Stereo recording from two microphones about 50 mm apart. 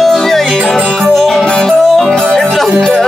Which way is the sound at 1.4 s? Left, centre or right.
Centre.